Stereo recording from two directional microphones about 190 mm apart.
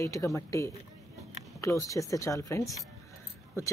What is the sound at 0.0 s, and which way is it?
Speech, 15° left (ahead or behind).